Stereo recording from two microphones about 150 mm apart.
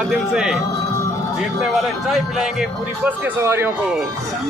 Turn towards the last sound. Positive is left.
turn(degrees=-15)  # may be behind; listen again after turning